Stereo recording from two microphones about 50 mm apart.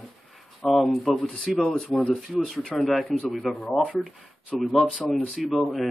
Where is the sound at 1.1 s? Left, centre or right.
Centre.